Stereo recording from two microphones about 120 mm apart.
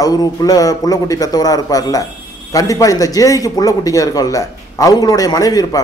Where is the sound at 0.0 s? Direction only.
30° left (ahead or behind).